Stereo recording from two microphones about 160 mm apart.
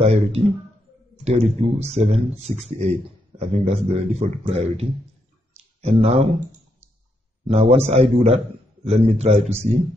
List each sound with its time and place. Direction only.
0.0 s a man's voice: 40° right (ahead or behind)
7.4 s a man's voice: 40° right (ahead or behind)